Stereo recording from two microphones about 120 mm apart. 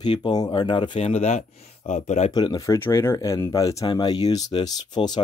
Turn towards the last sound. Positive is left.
turn(degrees=35)  # may be behind; listen again after turning